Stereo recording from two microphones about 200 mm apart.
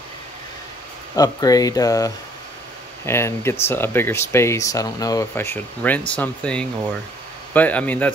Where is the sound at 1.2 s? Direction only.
20° left (ahead or behind).